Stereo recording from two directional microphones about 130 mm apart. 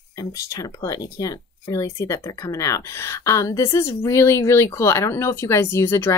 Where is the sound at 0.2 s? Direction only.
30° left (ahead or behind).